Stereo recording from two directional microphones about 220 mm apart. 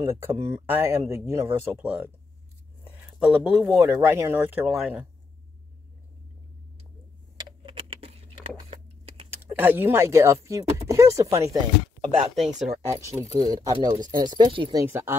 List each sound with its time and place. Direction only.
0.0 s speech: 10° right (ahead or behind)
2.8 s a sound: 5° right (ahead or behind)
3.6 s speech: 15° right (ahead or behind)
7.6 s keys jangling: 25° right (ahead or behind)
9.3 s speech: 10° right (ahead or behind)
12.4 s speech: 5° right (ahead or behind)
12.9 s speech: 15° right (ahead or behind)